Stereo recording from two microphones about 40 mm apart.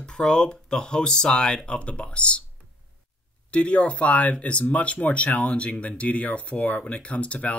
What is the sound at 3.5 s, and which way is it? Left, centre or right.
Speech, left.